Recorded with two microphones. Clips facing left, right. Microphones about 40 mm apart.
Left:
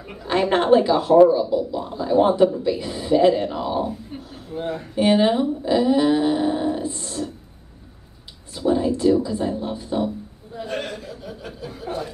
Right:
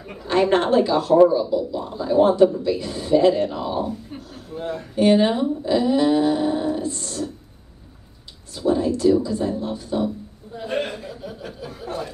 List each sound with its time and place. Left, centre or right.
0.2 s a woman's voice: centre
1.8 s speech: centre
8.5 s a woman's voice: centre
10.7 s chuckle: right
11.0 s chuckle: centre